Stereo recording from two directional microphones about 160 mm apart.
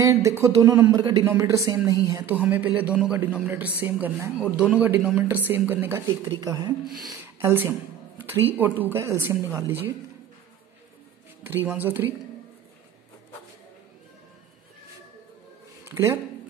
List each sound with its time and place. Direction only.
0.0 s speech: 20° right (ahead or behind)
8.3 s speech: 15° right (ahead or behind)
11.4 s speech: 15° right (ahead or behind)
15.8 s speech: 15° right (ahead or behind)